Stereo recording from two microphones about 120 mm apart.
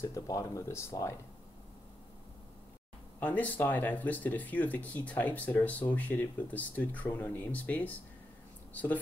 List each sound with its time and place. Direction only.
0.0 s speech: 30° left (ahead or behind)
3.2 s speech: 15° left (ahead or behind)